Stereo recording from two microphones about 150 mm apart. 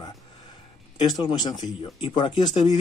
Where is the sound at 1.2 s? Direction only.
30° left (ahead or behind).